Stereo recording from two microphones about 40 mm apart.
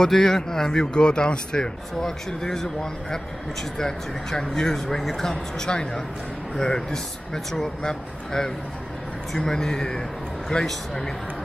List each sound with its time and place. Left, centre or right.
0.0 s a man's voice: centre